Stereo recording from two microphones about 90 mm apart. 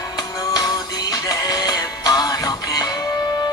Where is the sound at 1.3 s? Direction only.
45° left (ahead or behind).